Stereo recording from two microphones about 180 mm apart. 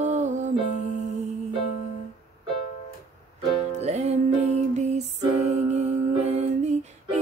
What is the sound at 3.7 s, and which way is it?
Music, 40° right (ahead or behind).